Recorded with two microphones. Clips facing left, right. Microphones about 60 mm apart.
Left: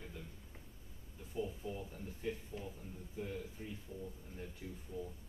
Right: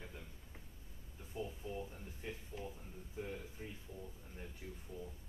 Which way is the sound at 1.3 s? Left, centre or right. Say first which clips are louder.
Left 2 dB; centre.